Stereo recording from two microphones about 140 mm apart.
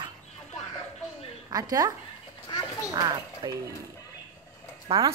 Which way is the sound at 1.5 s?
25° right (ahead or behind).